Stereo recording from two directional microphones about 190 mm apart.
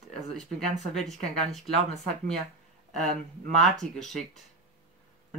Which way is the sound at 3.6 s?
Centre (ahead or behind).